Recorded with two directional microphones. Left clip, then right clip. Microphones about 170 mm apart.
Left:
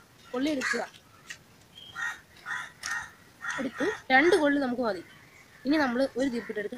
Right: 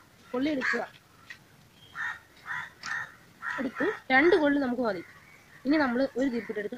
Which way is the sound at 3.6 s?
15° left (ahead or behind).